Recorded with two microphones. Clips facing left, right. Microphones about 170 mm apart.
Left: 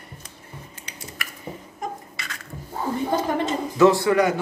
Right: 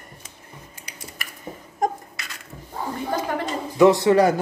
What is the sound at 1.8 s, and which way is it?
Beatboxing, 45° right (ahead or behind).